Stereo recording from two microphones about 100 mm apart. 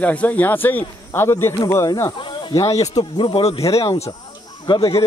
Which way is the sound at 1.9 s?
35° left (ahead or behind).